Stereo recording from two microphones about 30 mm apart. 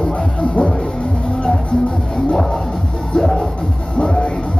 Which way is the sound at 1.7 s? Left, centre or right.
Centre.